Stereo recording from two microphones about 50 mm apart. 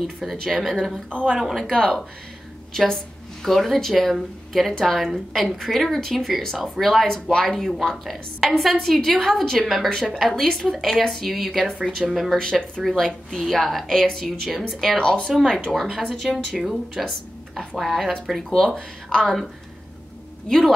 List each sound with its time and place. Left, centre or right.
0.0 s speech: centre
1.4 s speech: centre
12.4 s speech: centre
15.0 s speech: centre
15.2 s speech: centre
18.5 s speech: centre
20.4 s speech: centre